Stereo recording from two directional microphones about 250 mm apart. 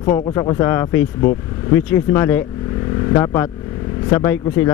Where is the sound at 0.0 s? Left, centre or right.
Centre.